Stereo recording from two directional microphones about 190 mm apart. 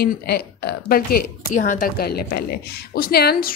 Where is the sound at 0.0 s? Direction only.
60° left (ahead or behind).